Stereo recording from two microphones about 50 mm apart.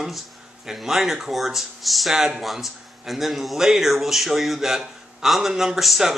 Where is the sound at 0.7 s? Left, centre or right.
Centre.